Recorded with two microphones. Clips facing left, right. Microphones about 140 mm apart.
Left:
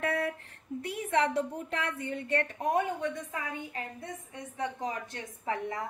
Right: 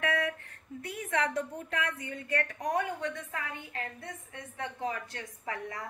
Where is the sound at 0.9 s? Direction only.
30° left (ahead or behind).